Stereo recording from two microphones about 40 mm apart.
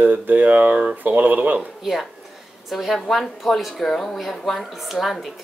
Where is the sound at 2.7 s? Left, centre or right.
Centre.